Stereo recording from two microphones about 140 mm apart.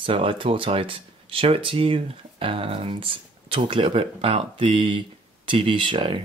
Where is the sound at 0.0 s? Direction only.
40° right (ahead or behind).